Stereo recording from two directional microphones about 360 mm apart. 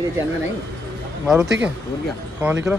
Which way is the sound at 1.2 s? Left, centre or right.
Centre.